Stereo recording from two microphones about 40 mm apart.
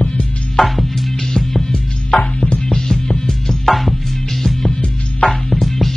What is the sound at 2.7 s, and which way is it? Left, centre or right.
Music, centre.